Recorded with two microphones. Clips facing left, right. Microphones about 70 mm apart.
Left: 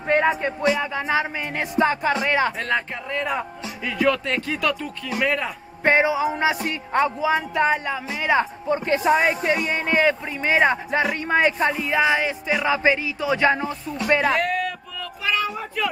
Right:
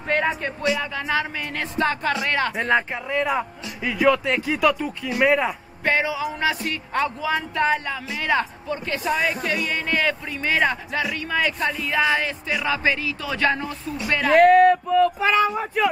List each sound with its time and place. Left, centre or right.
0.1 s speech: centre
2.5 s speech: centre
3.2 s speech: centre
5.9 s speech: left
8.6 s speech: left
14.3 s speech: right
15.5 s speech: centre